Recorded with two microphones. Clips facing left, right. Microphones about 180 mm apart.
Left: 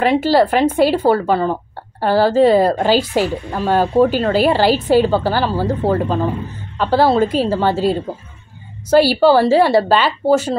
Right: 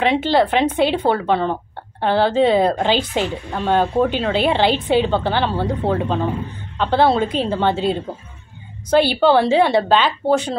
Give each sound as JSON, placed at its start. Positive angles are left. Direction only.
{"t": 0.0, "sound": "speech", "side_deg": 5}